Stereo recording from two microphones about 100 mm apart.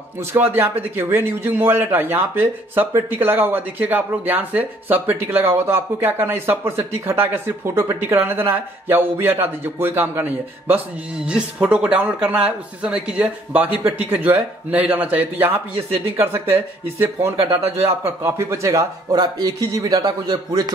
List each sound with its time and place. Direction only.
0.2 s a man's voice: 25° right (ahead or behind)
11.2 s a man's voice: 10° right (ahead or behind)
18.0 s a man's voice: 25° right (ahead or behind)